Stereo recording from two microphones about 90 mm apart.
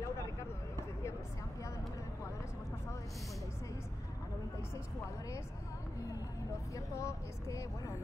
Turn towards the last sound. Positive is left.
turn(degrees=35)  # may be behind; listen again after turning